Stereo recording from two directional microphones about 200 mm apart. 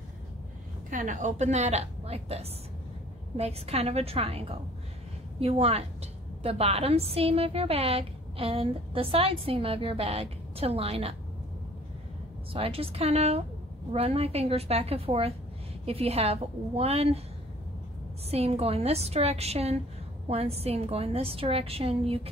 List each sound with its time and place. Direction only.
0.8 s a woman's voice: 40° right (ahead or behind)
12.5 s a woman's voice: 30° right (ahead or behind)
18.3 s a woman's voice: 30° right (ahead or behind)